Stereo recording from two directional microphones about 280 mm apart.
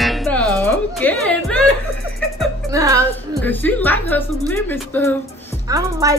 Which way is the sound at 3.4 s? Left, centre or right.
Centre.